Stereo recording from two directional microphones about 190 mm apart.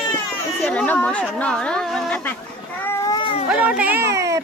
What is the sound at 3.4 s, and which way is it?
Speech, 5° right (ahead or behind).